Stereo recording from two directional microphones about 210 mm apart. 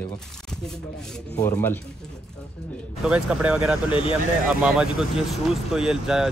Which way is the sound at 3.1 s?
5° right (ahead or behind).